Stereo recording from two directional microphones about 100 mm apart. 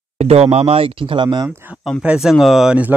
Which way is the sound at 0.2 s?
90° right.